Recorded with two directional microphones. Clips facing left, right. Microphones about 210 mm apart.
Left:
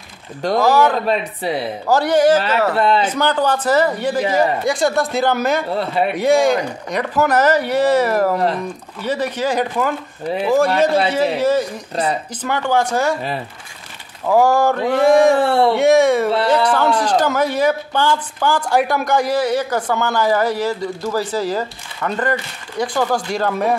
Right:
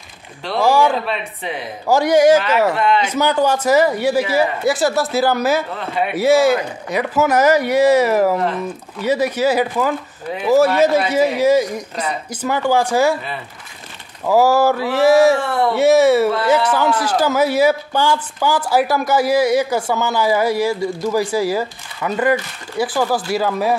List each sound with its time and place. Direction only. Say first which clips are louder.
0.6 s a man's voice: even; 10° right (ahead or behind)
1.0 s speech: left 5 dB; 40° left (ahead or behind)
1.9 s a man's voice: right 2 dB; 10° right (ahead or behind)
2.7 s speech: left 1 dB; 35° left (ahead or behind)
3.1 s a man's voice: right 1 dB; 10° right (ahead or behind)
5.7 s speech: left 3 dB; 35° left (ahead or behind)
6.1 s a man's voice: right 2 dB; 5° right (ahead or behind)
11.1 s a man's voice: right 2 dB; 10° right (ahead or behind)
14.2 s speech: right 1 dB; 5° right (ahead or behind)
15.3 s speech: left 4 dB; 30° left (ahead or behind)
15.7 s a man's voice: right 4 dB; 5° right (ahead or behind)